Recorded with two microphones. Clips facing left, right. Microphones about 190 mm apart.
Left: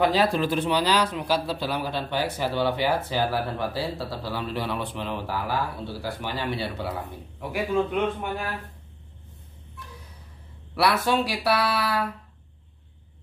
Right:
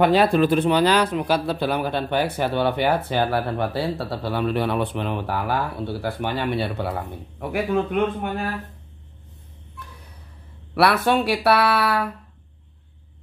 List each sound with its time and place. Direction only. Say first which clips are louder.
0.0 s a man's voice: right 5 dB; 60° right (ahead or behind)
10.7 s a man's voice: right 4 dB; 60° right (ahead or behind)